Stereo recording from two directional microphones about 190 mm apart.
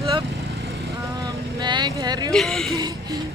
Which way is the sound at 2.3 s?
Centre (ahead or behind).